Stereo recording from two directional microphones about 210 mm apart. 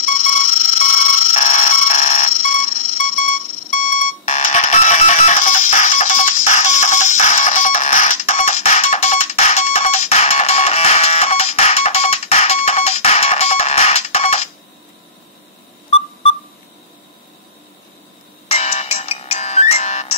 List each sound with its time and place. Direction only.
0.0 s music: 40° left (ahead or behind)
18.5 s music: 30° left (ahead or behind)